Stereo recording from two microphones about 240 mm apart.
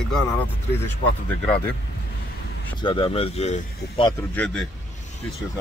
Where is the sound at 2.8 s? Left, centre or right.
Left.